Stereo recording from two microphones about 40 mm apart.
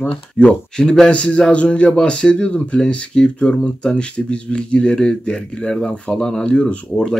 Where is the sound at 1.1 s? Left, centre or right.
Left.